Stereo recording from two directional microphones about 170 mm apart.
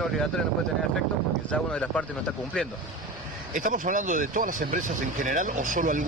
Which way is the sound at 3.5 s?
50° right (ahead or behind).